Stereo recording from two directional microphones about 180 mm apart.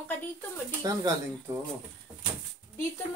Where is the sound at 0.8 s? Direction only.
20° right (ahead or behind).